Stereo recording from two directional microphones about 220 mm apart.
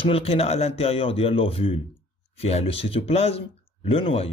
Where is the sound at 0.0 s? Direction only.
25° left (ahead or behind).